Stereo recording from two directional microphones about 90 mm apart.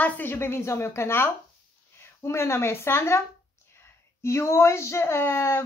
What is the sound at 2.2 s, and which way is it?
Speech, 30° left (ahead or behind).